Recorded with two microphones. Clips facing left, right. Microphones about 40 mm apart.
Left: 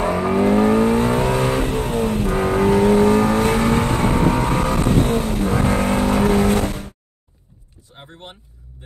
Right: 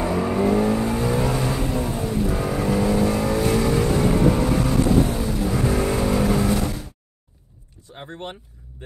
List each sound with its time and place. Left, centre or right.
0.0 s vehicle: left
8.1 s vehicle: right